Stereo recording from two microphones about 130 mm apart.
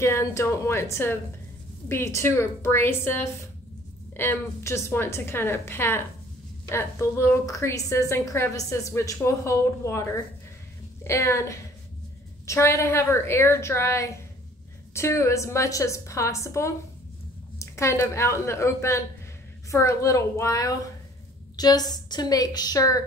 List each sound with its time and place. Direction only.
0.0 s a woman's voice: 20° left (ahead or behind)